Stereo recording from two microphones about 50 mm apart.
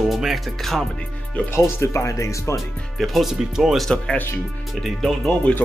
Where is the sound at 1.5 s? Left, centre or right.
Left.